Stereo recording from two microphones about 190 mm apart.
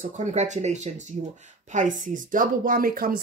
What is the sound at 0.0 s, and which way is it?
Speech, 40° right (ahead or behind).